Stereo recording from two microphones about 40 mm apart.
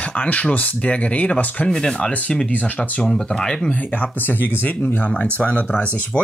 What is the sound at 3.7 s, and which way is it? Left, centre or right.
Speech, left.